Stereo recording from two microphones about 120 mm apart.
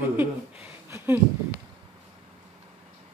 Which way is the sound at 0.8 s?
20° right (ahead or behind).